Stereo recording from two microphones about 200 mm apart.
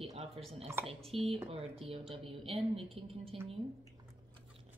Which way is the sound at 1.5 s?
30° right (ahead or behind).